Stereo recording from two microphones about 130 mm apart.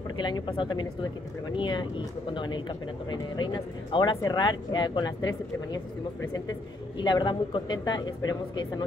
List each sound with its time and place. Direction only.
0.2 s speech: 40° left (ahead or behind)
7.0 s speech: 35° left (ahead or behind)